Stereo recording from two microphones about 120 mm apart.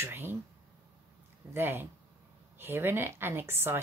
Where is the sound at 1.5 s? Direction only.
20° right (ahead or behind).